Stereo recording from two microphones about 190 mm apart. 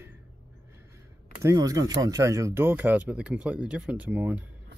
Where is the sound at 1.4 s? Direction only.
20° right (ahead or behind).